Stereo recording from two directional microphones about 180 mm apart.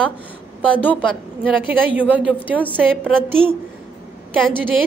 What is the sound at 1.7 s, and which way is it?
Speech, 10° right (ahead or behind).